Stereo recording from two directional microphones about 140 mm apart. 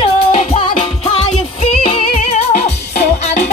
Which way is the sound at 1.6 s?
45° left (ahead or behind).